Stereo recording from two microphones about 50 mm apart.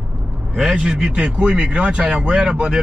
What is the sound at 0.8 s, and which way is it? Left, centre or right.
Speech, right.